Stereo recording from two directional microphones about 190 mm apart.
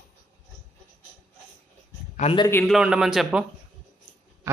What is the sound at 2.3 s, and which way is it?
Speech, 20° left (ahead or behind).